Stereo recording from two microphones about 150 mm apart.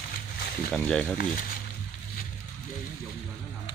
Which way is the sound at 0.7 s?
5° left (ahead or behind).